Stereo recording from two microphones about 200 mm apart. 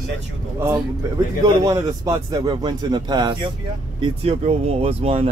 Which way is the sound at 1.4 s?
15° right (ahead or behind).